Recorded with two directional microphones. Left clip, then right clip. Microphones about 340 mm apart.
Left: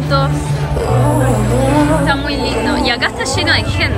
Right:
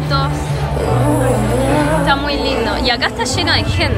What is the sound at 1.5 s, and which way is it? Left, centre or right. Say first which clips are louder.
Music: left 4 dB; right.